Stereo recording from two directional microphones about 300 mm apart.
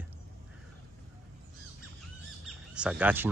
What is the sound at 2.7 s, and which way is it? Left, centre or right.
Speech, centre.